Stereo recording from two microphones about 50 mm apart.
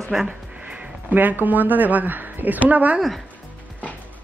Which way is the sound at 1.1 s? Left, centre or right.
Right.